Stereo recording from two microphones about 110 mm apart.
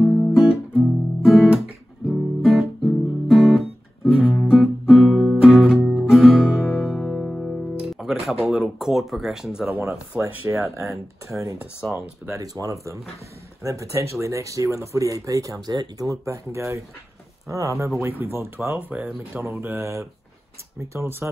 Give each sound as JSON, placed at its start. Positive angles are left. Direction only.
{"t": 0.0, "sound": "guitar", "side_deg": -5}
{"t": 0.7, "sound": "music", "side_deg": 0}
{"t": 9.7, "sound": "speech", "side_deg": -20}